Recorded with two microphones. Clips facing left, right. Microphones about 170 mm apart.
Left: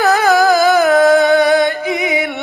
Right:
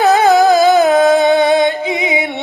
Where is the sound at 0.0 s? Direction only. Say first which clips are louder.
Right 2 dB; 20° right (ahead or behind).